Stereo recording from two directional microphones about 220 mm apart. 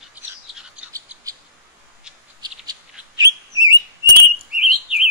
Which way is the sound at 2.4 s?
20° right (ahead or behind).